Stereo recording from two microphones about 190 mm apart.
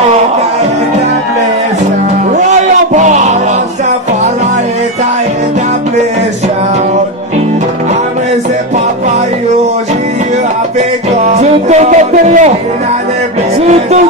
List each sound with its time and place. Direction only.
2.9 s music: 40° right (ahead or behind)
11.3 s music: 35° right (ahead or behind)